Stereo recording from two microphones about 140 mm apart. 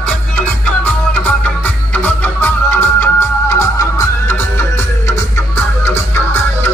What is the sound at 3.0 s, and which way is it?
Music, 20° left (ahead or behind).